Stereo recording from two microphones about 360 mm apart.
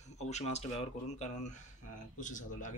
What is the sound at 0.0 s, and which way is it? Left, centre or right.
Speech, centre.